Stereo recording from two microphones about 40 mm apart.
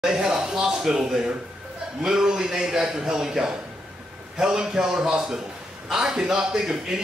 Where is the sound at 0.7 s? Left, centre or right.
Centre.